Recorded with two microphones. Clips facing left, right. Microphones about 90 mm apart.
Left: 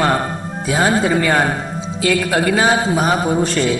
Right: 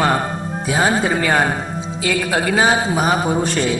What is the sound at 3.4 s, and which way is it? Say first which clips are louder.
Speech: left 2 dB; 25° right (ahead or behind).